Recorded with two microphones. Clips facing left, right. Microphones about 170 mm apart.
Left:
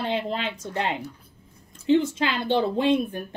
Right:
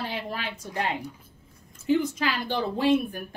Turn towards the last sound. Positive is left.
turn(degrees=20)  # may be behind; listen again after turning